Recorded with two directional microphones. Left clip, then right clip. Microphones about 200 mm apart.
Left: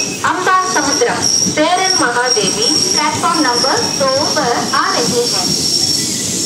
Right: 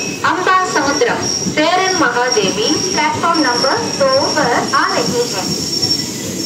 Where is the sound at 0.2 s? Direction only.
20° left (ahead or behind).